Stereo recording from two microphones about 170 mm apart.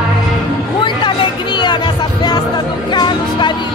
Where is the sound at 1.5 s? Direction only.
25° left (ahead or behind).